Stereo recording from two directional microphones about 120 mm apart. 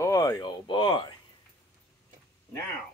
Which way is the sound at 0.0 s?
25° left (ahead or behind).